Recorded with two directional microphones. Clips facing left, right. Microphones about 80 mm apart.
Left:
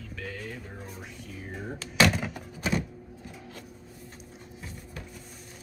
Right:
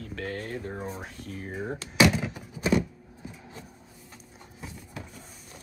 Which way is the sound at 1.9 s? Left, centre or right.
Centre.